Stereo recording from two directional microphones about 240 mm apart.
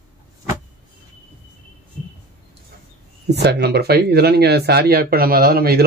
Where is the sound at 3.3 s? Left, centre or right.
Right.